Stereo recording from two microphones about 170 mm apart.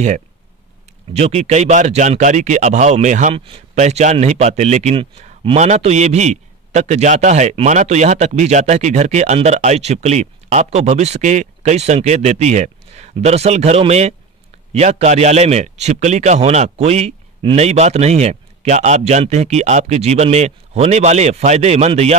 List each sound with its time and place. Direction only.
1.1 s speech: 40° right (ahead or behind)